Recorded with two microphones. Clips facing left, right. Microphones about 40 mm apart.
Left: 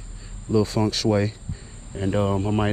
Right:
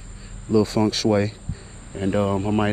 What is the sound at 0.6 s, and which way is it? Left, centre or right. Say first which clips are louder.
Speech: right 2 dB; right.